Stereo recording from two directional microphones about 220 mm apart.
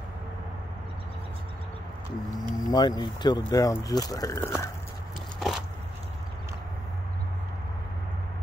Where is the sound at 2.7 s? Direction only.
20° left (ahead or behind).